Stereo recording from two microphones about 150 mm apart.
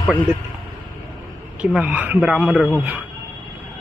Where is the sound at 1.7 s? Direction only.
10° right (ahead or behind).